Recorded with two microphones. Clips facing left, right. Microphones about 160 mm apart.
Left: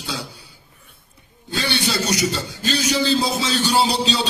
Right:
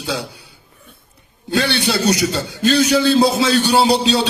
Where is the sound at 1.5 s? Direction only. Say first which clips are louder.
Right 5 dB; 65° right (ahead or behind).